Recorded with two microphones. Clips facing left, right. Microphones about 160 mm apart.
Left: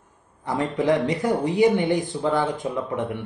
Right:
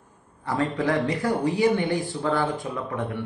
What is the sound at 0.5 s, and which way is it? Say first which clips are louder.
Speech: left 3 dB; 20° left (ahead or behind).